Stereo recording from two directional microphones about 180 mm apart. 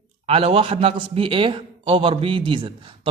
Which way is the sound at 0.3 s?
30° right (ahead or behind).